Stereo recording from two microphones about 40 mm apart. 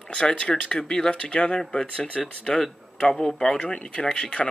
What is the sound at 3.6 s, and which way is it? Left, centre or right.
Speech, left.